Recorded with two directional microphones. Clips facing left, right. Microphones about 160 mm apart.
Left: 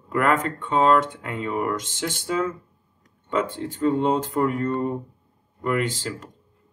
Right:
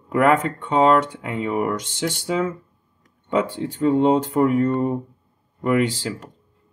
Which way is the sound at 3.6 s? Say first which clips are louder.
Right 5 dB; 10° right (ahead or behind).